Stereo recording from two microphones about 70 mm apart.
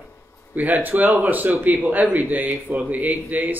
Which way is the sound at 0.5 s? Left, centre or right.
Right.